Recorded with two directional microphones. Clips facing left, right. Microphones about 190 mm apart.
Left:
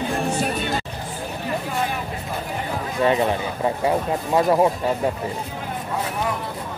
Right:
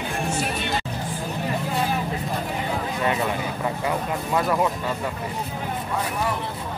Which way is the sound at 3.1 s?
30° left (ahead or behind).